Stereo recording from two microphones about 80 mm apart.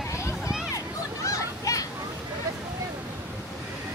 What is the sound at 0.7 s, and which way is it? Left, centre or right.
Children playing, left.